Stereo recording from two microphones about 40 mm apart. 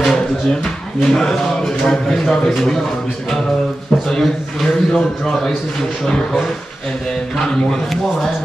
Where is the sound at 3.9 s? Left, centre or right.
Centre.